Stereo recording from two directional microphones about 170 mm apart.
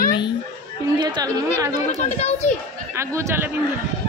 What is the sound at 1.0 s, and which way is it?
Speech, 25° right (ahead or behind).